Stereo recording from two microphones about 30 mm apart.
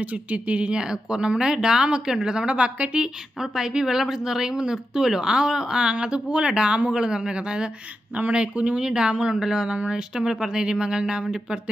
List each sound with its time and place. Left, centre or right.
0.0 s speech: right
0.8 s speech: right
3.3 s speech: right
8.8 s speech: right